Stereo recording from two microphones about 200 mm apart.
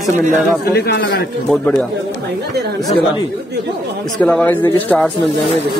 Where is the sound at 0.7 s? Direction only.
55° left (ahead or behind).